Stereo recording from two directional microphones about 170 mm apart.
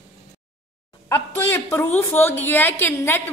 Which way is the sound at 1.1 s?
15° left (ahead or behind).